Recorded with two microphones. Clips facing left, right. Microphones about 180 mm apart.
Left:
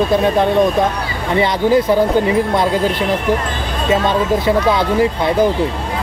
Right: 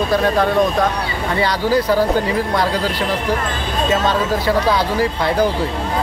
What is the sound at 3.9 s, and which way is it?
Speech, 20° left (ahead or behind).